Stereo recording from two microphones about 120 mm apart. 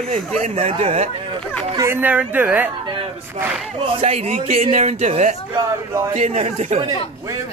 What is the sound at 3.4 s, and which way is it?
Speech, 55° right (ahead or behind).